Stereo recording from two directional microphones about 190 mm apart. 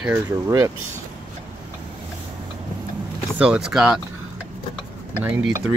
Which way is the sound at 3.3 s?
5° right (ahead or behind).